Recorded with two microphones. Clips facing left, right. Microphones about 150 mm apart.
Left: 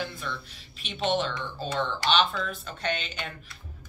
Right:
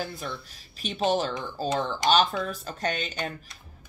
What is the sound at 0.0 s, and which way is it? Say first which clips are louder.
A woman's voice: right 1 dB; 40° right (ahead or behind).